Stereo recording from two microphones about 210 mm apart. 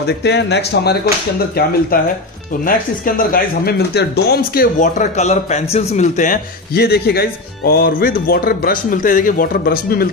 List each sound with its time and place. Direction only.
0.0 s speech: 55° left (ahead or behind)
2.6 s speech: 40° left (ahead or behind)